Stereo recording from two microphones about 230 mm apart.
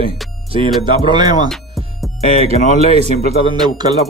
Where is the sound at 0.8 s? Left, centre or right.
Centre.